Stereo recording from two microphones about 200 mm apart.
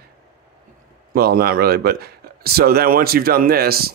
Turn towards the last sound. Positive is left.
turn(degrees=-50)  # may be behind; listen again after turning